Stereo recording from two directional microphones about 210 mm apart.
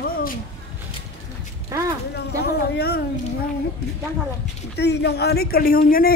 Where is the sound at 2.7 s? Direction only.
50° left (ahead or behind).